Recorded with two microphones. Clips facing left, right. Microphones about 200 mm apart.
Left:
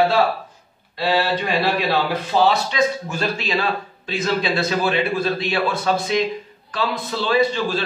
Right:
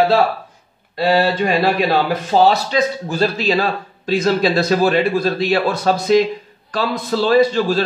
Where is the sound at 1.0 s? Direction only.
45° right (ahead or behind).